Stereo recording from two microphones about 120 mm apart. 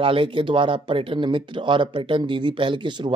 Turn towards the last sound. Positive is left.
turn(degrees=-40)  # may be behind; listen again after turning